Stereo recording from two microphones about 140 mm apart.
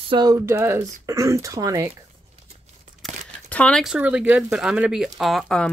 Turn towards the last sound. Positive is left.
turn(degrees=5)  # may be behind; listen again after turning